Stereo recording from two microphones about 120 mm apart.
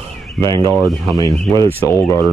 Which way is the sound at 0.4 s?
35° right (ahead or behind).